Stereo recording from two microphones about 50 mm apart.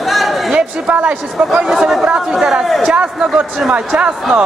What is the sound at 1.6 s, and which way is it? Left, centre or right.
Speech, centre.